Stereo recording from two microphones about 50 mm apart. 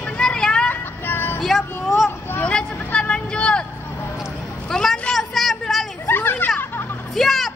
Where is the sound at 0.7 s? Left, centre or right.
Left.